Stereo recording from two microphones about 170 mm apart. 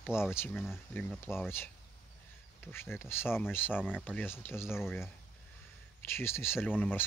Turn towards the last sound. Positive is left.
turn(degrees=10)  # may be behind; listen again after turning